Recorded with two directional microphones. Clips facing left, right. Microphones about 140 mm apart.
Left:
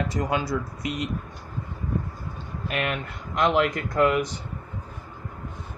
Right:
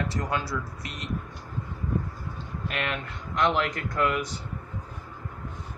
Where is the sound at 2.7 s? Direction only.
10° left (ahead or behind).